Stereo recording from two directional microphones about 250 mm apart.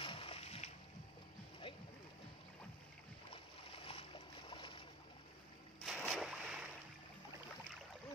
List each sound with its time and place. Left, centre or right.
0.0 s splash: left
3.7 s boat: left
5.8 s boat: centre